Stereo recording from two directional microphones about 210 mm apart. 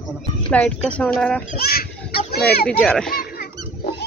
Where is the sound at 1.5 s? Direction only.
45° left (ahead or behind).